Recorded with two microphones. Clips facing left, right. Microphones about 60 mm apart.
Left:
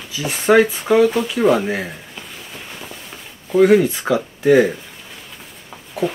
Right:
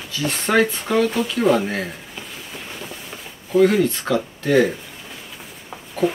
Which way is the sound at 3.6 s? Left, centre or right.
Centre.